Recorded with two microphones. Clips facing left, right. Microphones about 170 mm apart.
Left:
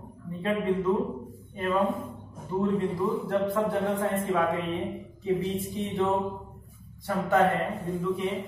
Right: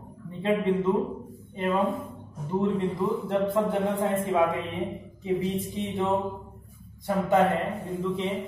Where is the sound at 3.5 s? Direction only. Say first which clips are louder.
Right 1 dB; 20° right (ahead or behind).